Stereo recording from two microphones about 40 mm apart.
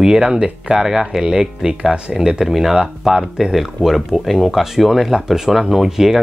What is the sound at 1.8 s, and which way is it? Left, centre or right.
Speech, right.